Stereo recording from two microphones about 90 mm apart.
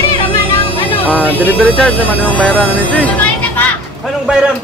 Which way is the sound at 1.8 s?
5° left (ahead or behind).